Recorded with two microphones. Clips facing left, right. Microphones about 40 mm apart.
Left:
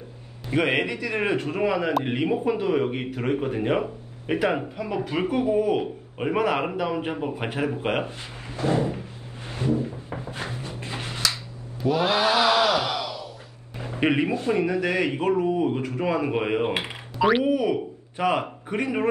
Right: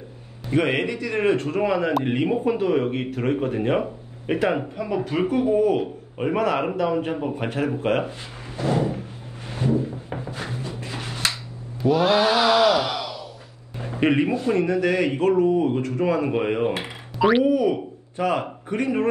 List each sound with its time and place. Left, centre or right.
0.5 s a man's voice: centre
9.6 s drawer open or close: right
10.3 s a sound: left
11.8 s a man's voice: centre
18.1 s speech: centre